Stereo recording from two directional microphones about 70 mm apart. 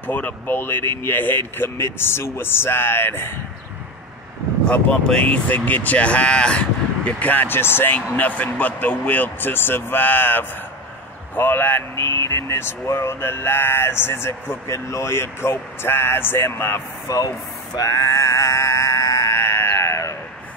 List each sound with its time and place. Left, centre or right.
0.0 s speech: left
4.6 s speech: centre
5.5 s speech: left
11.9 s speech: left
17.7 s music: left
19.3 s a sound: left